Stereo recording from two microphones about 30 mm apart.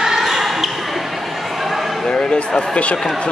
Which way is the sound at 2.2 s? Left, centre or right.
Left.